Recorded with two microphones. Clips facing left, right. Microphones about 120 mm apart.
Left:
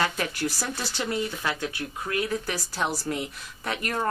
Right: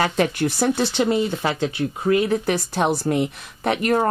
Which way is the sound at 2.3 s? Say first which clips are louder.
Right 9 dB; 60° right (ahead or behind).